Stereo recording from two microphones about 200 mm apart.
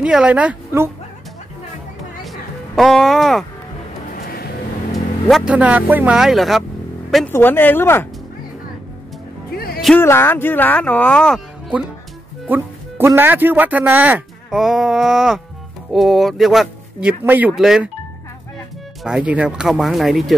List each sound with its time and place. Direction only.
0.0 s speech: 5° right (ahead or behind)
2.2 s music: centre (ahead or behind)
4.1 s vehicle: 50° left (ahead or behind)
5.3 s speech: 5° right (ahead or behind); by 8.1 s 10° left (ahead or behind)
9.8 s music: centre (ahead or behind)
10.0 s speech: 10° left (ahead or behind)
12.4 s speech: 10° right (ahead or behind)
19.0 s speech: 5° right (ahead or behind)